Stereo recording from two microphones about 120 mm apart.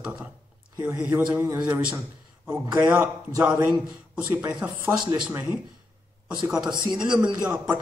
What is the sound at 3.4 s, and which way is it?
Speech, 10° right (ahead or behind).